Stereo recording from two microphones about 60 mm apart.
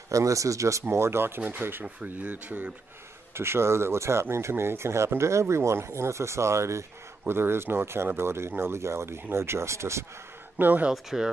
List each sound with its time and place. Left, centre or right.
0.1 s speech: right
0.8 s speech: right
3.3 s speech: right
10.6 s speech: right
10.9 s speech: centre